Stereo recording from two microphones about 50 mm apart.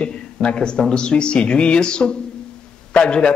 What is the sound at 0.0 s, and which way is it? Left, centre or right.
Speech, left.